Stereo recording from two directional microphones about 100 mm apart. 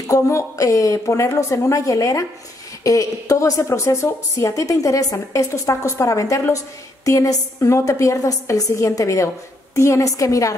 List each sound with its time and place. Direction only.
0.1 s a woman's voice: 30° left (ahead or behind)